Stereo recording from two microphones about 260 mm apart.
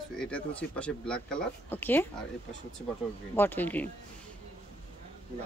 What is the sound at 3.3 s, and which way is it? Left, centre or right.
Speech, centre.